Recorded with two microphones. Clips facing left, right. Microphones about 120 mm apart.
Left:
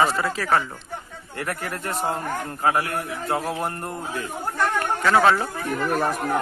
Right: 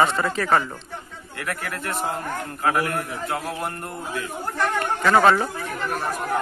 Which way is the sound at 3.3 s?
Centre (ahead or behind).